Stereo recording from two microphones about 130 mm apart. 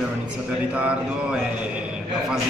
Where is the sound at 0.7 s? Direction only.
10° right (ahead or behind).